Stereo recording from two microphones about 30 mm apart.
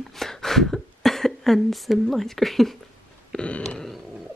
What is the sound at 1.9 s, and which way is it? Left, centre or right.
Speech, centre.